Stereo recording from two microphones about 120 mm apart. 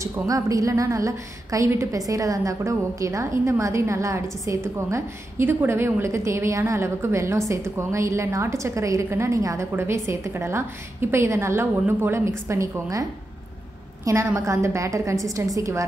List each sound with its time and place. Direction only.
0.0 s a woman's voice: 25° right (ahead or behind)
14.0 s a woman's voice: 25° right (ahead or behind)